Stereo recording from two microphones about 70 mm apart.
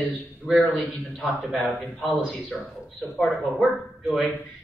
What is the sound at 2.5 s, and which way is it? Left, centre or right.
Speech, centre.